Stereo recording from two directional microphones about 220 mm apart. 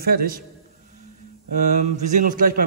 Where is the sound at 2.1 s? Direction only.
35° right (ahead or behind).